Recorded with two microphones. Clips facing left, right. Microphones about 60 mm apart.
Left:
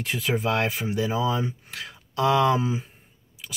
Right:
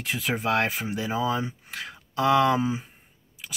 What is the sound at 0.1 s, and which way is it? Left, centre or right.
Speech, right.